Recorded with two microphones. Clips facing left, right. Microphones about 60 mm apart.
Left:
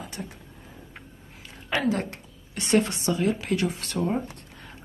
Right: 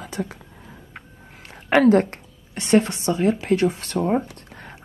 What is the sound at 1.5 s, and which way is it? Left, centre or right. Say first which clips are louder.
Speech: right 11 dB; right.